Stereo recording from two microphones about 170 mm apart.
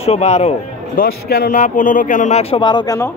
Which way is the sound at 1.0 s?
60° left (ahead or behind).